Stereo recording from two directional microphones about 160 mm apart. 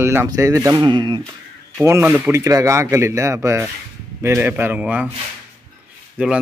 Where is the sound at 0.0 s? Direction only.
15° right (ahead or behind).